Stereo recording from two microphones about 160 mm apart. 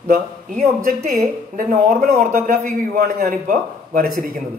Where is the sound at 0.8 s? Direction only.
55° right (ahead or behind).